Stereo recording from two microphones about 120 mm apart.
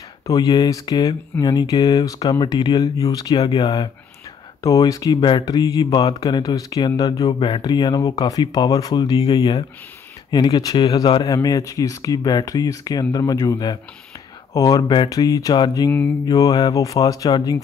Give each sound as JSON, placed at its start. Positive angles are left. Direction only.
{"t": 0.3, "sound": "speech", "side_deg": 35}
{"t": 4.6, "sound": "speech", "side_deg": 30}
{"t": 7.2, "sound": "speech", "side_deg": 45}
{"t": 9.2, "sound": "speech", "side_deg": 45}
{"t": 10.3, "sound": "speech", "side_deg": 35}